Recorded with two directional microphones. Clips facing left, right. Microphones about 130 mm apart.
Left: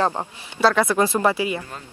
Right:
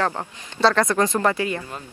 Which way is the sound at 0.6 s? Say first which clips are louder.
Left 1 dB; 5° left (ahead or behind).